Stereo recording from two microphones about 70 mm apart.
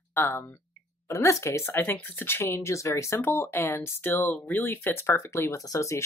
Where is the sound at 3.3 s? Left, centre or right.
Left.